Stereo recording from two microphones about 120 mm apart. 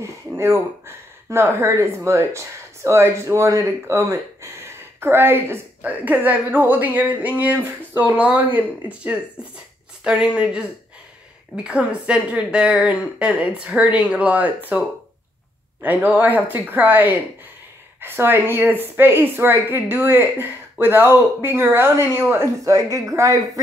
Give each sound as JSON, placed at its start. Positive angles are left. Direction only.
{"t": 0.0, "sound": "a woman's voice", "side_deg": -25}
{"t": 10.0, "sound": "a woman's voice", "side_deg": -5}
{"t": 15.8, "sound": "a woman's voice", "side_deg": -15}